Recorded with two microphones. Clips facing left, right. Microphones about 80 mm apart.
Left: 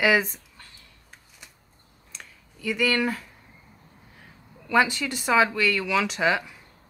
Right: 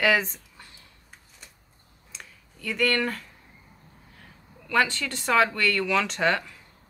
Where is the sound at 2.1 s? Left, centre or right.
Centre.